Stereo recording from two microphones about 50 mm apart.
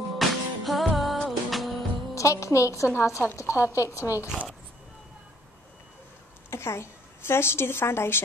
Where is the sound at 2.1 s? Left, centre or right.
Left.